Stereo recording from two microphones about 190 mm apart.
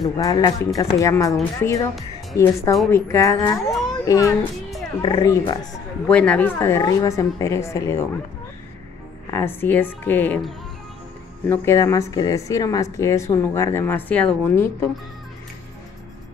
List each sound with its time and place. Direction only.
0.0 s a woman's voice: 20° left (ahead or behind)
6.0 s a woman's voice: 5° left (ahead or behind)
9.3 s a woman's voice: 10° left (ahead or behind)